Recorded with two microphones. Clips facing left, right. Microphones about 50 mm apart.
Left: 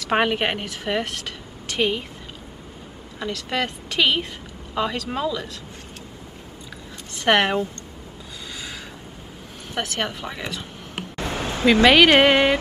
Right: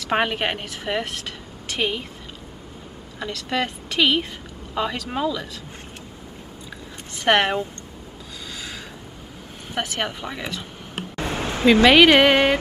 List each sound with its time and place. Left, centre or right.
0.1 s speech: centre
3.2 s speech: centre
7.2 s speech: centre
8.5 s gasp: centre
9.8 s speech: centre
11.1 s a sound: right
11.9 s speech: centre
12.2 s music: centre